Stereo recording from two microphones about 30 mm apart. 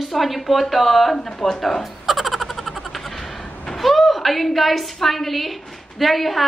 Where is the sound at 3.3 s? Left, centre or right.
Left.